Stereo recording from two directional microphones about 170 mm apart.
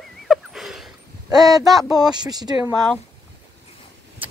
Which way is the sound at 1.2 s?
20° right (ahead or behind).